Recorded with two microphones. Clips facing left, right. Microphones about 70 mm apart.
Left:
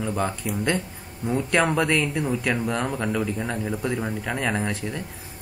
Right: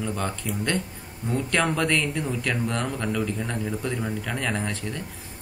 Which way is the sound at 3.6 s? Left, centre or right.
Left.